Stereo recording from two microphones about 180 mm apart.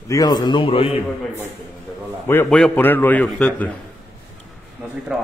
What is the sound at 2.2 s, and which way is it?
A man's voice, 10° left (ahead or behind).